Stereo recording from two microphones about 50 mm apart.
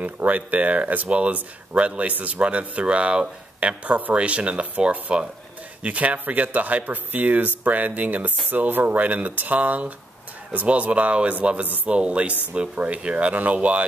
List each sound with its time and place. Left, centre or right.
0.0 s a man's voice: right